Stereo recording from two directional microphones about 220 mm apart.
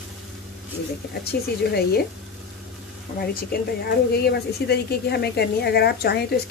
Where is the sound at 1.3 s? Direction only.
45° left (ahead or behind).